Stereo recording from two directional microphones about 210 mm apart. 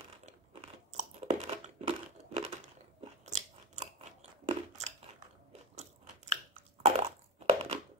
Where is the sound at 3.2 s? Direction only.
35° right (ahead or behind).